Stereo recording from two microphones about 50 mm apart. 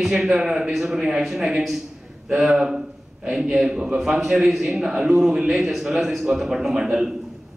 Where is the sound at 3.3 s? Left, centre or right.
Centre.